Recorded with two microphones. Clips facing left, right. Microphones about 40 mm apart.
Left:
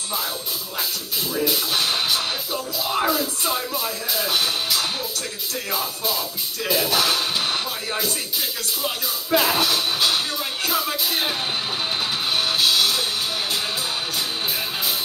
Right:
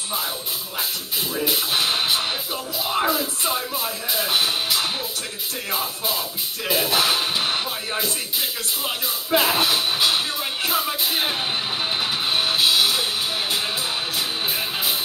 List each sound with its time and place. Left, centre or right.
1.4 s speech: centre
8.0 s music: right